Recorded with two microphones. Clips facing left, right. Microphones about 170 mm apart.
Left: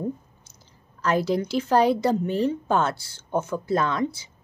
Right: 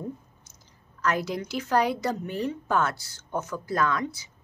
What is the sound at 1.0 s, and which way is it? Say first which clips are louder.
A woman's voice: left 5 dB; 30° left (ahead or behind).